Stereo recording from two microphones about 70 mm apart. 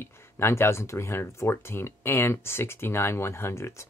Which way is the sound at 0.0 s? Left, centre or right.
Left.